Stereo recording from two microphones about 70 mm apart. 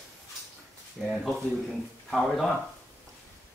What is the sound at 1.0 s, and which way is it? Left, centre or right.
Speech, centre.